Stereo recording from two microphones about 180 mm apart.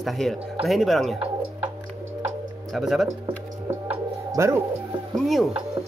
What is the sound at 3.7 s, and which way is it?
Music, 15° right (ahead or behind).